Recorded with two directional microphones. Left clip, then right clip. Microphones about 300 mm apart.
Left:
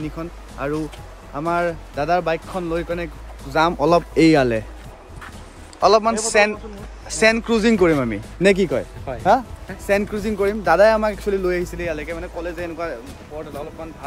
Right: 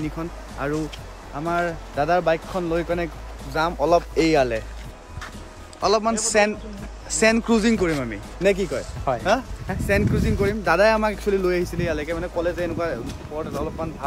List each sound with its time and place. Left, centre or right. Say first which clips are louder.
0.0 s speech: even; centre
3.4 s a man's voice: left 4 dB; centre
5.8 s speech: left 5 dB; centre
7.7 s a man's voice: left 6 dB; centre
9.1 s speech: right 6 dB; centre
9.8 s speech: left 2 dB; centre